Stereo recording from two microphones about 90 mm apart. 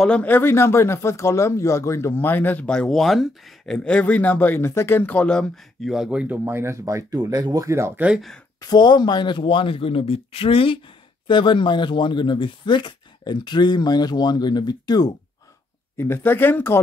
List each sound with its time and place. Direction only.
0.0 s speech: 15° left (ahead or behind)
2.7 s speech: 5° left (ahead or behind)
6.2 s speech: 20° right (ahead or behind)
8.5 s speech: 50° left (ahead or behind); by 10.8 s 85° left
11.2 s speech: 65° left (ahead or behind); by 15.1 s 50° left (ahead or behind)
16.0 s speech: 25° left (ahead or behind)